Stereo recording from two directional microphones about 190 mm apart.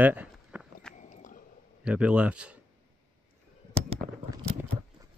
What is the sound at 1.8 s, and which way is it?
Speech, 5° right (ahead or behind).